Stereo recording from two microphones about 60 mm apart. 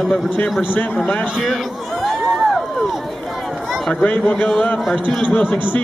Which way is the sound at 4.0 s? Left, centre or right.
Left.